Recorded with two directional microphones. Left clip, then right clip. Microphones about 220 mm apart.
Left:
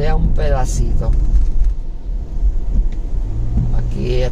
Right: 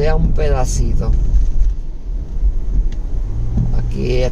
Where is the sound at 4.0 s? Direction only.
25° right (ahead or behind).